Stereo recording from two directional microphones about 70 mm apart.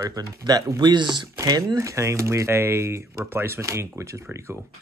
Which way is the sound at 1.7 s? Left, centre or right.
Right.